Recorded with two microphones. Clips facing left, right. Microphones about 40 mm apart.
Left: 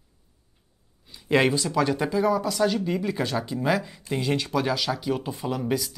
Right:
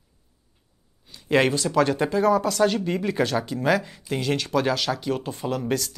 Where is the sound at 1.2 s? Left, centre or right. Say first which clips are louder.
Right 1 dB; centre.